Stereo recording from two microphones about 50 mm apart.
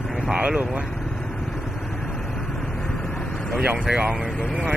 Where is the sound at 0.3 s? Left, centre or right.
Right.